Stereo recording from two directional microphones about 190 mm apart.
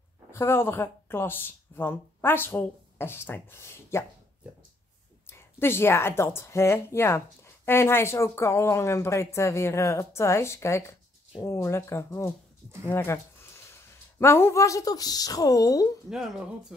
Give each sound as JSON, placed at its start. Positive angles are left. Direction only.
{"t": 0.3, "sound": "speech", "side_deg": 15}
{"t": 5.2, "sound": "speech", "side_deg": 10}
{"t": 12.8, "sound": "a sound", "side_deg": 10}
{"t": 14.2, "sound": "speech", "side_deg": 10}
{"t": 16.1, "sound": "speech", "side_deg": -5}